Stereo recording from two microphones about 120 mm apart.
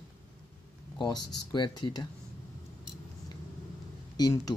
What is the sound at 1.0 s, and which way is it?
Speech, 35° left (ahead or behind).